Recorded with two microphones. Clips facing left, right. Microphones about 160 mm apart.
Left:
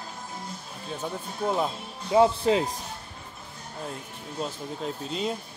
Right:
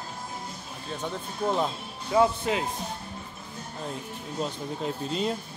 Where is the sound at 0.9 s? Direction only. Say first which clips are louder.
Even; 10° left (ahead or behind).